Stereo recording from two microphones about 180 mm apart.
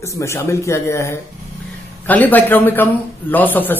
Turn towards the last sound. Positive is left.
turn(degrees=10)  # may be behind; listen again after turning